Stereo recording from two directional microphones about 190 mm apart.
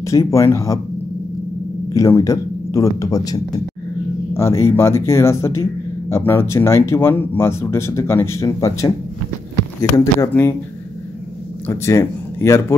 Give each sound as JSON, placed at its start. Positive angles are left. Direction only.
{"t": 0.0, "sound": "speech", "side_deg": 15}
{"t": 2.0, "sound": "speech", "side_deg": 15}
{"t": 11.6, "sound": "speech", "side_deg": 15}